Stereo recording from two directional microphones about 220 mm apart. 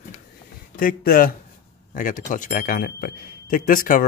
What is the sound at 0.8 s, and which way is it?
Speech, 40° left (ahead or behind).